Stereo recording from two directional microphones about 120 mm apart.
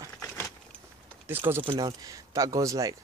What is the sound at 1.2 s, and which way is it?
Speech, 20° right (ahead or behind).